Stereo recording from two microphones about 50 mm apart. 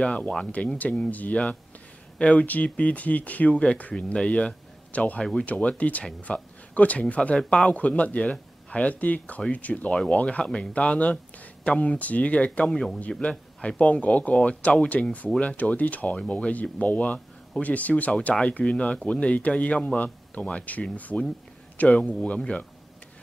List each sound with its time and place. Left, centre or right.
0.0 s a man's voice: left